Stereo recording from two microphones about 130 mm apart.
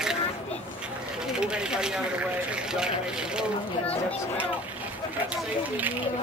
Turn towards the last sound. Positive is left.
turn(degrees=-10)  # may be behind; listen again after turning